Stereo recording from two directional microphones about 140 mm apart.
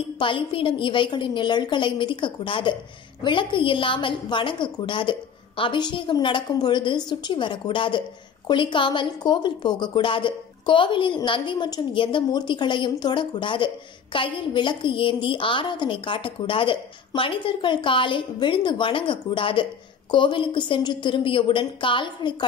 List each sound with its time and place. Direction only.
0.2 s a woman's voice: 40° left (ahead or behind)